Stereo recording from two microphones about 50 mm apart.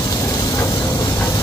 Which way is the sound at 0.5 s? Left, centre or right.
Left.